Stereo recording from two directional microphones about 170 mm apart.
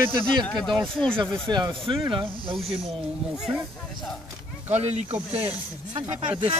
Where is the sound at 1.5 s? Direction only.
25° right (ahead or behind).